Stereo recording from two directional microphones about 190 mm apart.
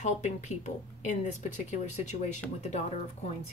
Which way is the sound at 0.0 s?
40° left (ahead or behind).